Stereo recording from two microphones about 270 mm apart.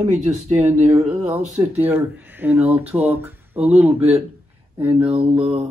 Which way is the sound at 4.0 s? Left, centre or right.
Right.